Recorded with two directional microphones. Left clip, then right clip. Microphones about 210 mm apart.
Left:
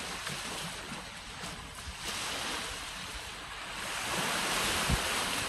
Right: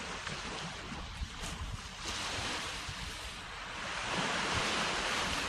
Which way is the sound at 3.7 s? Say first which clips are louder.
Left 1 dB; 50° left (ahead or behind).